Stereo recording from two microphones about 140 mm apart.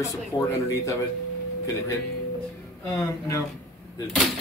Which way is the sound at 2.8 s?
20° left (ahead or behind).